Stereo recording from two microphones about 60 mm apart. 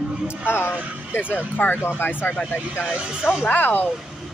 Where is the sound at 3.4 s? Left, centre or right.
Left.